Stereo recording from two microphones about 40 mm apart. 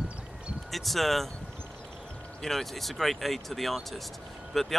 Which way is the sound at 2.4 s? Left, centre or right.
Centre.